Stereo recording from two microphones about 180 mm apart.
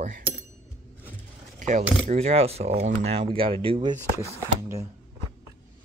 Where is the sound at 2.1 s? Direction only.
35° right (ahead or behind); by 4.9 s 15° right (ahead or behind).